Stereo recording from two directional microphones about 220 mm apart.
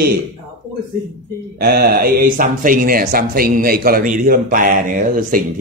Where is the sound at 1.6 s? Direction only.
45° right (ahead or behind).